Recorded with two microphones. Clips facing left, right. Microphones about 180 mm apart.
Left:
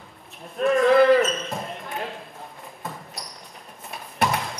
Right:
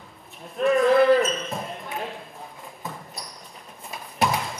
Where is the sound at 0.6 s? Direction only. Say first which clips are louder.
Left 1 dB; centre (ahead or behind).